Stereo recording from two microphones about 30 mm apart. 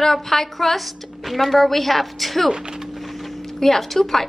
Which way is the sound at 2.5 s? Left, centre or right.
Right.